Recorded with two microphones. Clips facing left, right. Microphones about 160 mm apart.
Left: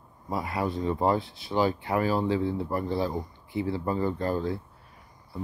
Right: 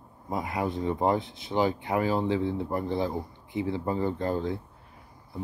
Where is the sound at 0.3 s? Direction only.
20° right (ahead or behind).